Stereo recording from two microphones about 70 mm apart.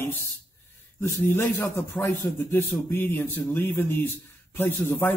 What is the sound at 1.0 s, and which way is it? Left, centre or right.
A man's voice, left.